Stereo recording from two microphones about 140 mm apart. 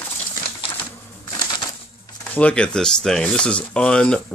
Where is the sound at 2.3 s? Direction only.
10° left (ahead or behind).